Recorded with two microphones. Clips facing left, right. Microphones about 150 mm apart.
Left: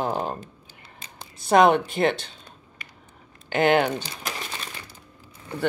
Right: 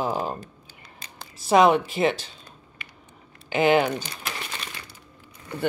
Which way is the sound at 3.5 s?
Centre (ahead or behind).